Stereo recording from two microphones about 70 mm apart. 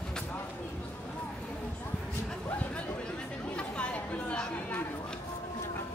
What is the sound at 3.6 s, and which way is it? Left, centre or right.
Chatter, centre.